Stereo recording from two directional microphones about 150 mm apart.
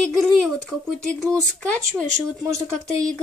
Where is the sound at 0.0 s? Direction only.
5° left (ahead or behind).